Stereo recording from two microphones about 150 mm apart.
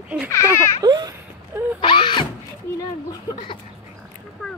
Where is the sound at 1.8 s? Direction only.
35° left (ahead or behind).